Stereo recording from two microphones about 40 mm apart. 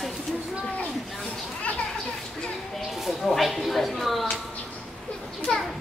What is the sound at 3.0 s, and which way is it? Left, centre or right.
Speech, centre.